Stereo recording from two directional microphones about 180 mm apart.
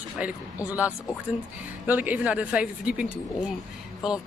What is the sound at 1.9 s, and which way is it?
Speech, 10° right (ahead or behind).